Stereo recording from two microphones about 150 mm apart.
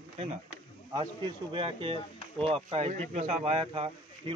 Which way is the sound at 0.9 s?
35° right (ahead or behind).